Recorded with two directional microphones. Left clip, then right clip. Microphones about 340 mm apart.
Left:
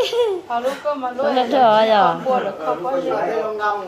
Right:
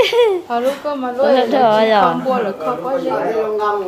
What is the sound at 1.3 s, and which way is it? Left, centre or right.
Speech, centre.